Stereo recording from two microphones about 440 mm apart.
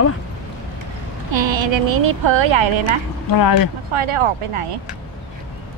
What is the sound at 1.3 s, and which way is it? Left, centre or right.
Speech, right.